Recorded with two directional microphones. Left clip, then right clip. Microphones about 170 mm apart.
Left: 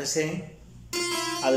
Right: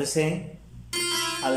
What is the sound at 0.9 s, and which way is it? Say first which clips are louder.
Harpsichord: right 1 dB; 15° left (ahead or behind).